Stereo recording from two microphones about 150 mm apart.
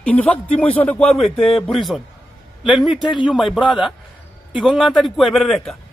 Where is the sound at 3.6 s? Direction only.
35° left (ahead or behind).